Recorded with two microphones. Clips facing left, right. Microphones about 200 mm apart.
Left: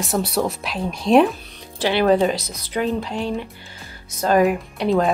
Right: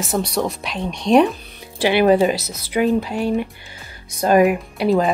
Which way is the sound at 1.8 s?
10° right (ahead or behind).